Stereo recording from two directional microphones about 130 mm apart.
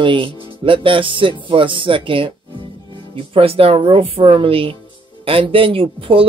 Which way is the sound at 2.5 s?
35° left (ahead or behind).